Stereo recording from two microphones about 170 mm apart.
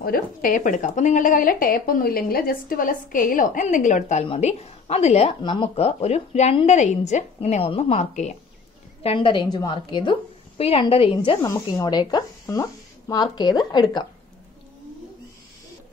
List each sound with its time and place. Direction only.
0.0 s a woman's voice: 60° left (ahead or behind); by 5.3 s 40° left (ahead or behind)
5.4 s speech: 30° left (ahead or behind); by 8.4 s 45° left (ahead or behind)
9.0 s speech: 30° left (ahead or behind)
11.4 s speech: 20° left (ahead or behind)